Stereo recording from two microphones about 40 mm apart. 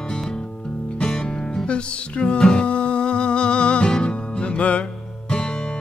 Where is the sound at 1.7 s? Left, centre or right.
Left.